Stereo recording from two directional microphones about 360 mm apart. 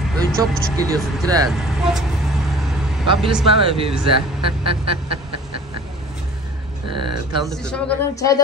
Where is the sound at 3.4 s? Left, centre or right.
Centre.